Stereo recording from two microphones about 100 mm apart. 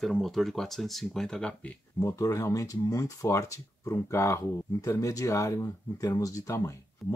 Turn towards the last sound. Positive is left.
turn(degrees=30)  # may be behind; listen again after turning